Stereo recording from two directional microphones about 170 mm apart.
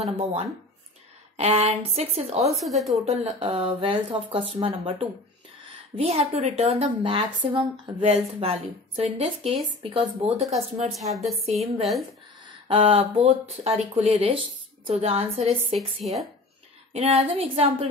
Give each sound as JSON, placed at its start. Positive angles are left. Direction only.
{"t": 0.2, "sound": "speech", "side_deg": -35}
{"t": 2.4, "sound": "a woman's voice", "side_deg": 0}
{"t": 3.1, "sound": "speech", "side_deg": -35}
{"t": 5.9, "sound": "speech", "side_deg": -35}
{"t": 10.5, "sound": "a woman's voice", "side_deg": 0}
{"t": 12.6, "sound": "speech", "side_deg": -30}
{"t": 15.4, "sound": "a woman's voice", "side_deg": 0}
{"t": 16.9, "sound": "speech", "side_deg": -35}